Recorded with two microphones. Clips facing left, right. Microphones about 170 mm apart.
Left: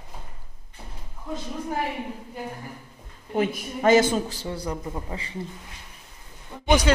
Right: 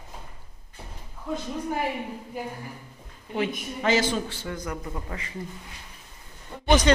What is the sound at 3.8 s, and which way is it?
A man's voice, 50° left (ahead or behind).